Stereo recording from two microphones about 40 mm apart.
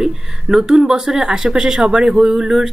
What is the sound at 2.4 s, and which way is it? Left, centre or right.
Speech, centre.